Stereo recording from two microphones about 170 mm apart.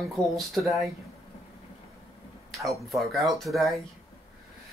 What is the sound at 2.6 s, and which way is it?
Speech, centre (ahead or behind).